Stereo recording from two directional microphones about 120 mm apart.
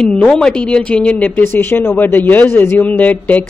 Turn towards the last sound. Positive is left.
turn(degrees=15)  # may be behind; listen again after turning